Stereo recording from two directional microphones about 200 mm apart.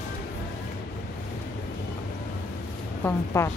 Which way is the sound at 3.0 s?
15° left (ahead or behind).